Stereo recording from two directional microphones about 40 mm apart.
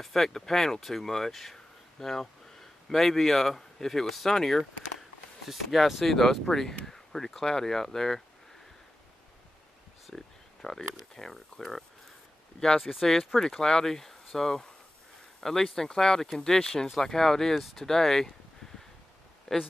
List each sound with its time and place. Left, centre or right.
0.0 s speech: centre
6.0 s speech: centre
10.1 s a sound: centre
10.6 s speech: centre
13.0 s speech: centre
19.5 s speech: centre